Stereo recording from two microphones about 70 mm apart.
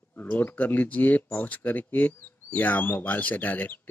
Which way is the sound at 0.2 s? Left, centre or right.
Left.